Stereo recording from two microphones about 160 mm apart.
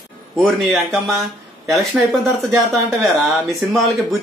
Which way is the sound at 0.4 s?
Centre (ahead or behind).